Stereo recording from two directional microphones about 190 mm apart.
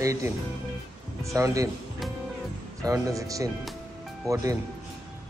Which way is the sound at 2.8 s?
15° right (ahead or behind).